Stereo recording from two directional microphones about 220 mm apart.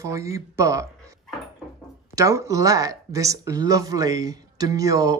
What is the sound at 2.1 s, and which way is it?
Speech, 15° right (ahead or behind).